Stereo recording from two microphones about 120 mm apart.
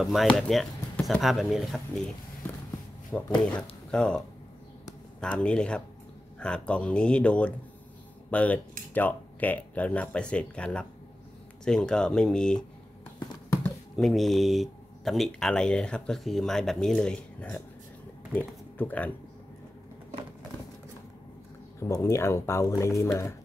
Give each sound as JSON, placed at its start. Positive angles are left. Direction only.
{"t": 0.0, "sound": "speech", "side_deg": 0}
{"t": 5.2, "sound": "speech", "side_deg": 10}
{"t": 13.2, "sound": "a sound", "side_deg": 35}
{"t": 14.0, "sound": "speech", "side_deg": 0}
{"t": 18.8, "sound": "speech", "side_deg": 15}
{"t": 21.7, "sound": "speech", "side_deg": 25}